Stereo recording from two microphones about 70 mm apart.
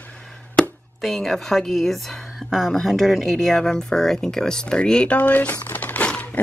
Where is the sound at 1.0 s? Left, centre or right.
Centre.